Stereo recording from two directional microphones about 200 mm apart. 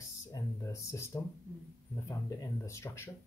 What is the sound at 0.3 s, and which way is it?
Speech, 15° left (ahead or behind).